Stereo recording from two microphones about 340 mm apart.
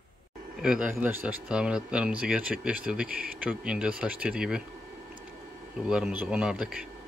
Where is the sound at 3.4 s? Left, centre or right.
Centre.